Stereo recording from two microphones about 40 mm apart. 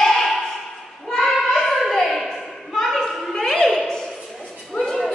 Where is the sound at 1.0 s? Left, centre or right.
Centre.